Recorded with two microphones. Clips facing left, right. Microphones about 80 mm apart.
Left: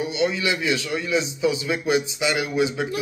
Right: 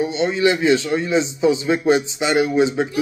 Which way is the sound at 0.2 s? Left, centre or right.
Right.